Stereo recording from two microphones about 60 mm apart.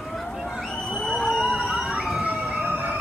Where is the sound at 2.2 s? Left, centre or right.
Right.